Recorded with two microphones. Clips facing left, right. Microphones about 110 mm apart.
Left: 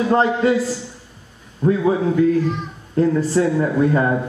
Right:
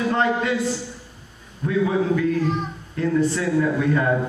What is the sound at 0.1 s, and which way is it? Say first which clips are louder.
Speech: left 7 dB; 35° left (ahead or behind).